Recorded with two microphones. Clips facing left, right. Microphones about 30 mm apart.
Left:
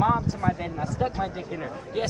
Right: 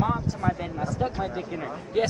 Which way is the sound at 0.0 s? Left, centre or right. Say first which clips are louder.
Left 3 dB; centre.